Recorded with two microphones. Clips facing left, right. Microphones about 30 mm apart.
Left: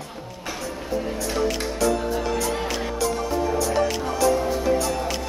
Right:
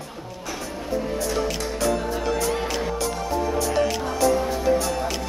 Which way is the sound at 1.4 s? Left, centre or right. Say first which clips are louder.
Left 2 dB; centre.